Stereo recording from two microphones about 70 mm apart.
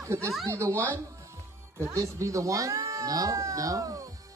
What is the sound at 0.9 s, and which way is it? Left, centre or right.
Music, right.